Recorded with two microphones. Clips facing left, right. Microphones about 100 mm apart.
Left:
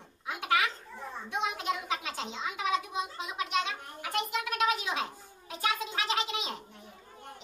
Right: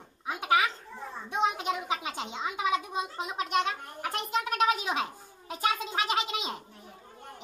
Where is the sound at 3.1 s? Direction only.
40° right (ahead or behind).